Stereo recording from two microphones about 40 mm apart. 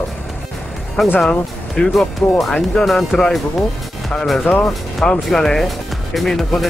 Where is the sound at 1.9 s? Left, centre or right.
Centre.